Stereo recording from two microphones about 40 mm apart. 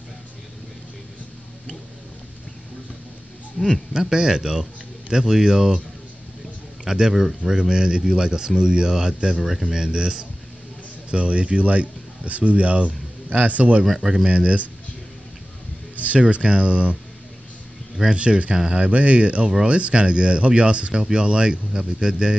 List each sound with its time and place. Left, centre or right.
3.6 s a man's voice: centre
3.9 s speech: centre
6.8 s a man's voice: centre; by 13.8 s right
13.8 s speech: centre
14.2 s speech: right
16.0 s speech: right
18.1 s speech: right
18.9 s speech: right
19.4 s speech: centre
19.7 s speech: right